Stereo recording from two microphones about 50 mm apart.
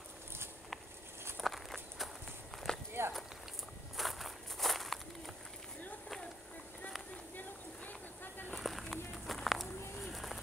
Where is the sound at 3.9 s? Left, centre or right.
Centre.